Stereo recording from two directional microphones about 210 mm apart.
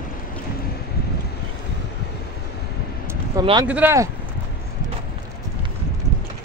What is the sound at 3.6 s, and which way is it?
Speech, 10° right (ahead or behind).